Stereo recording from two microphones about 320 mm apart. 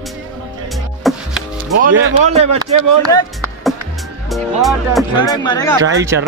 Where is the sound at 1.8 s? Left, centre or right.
Right.